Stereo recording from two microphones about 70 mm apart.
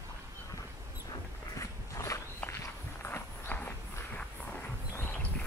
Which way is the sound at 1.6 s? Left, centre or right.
Left.